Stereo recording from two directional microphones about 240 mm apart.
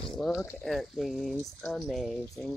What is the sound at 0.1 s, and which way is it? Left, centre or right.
Speech, centre.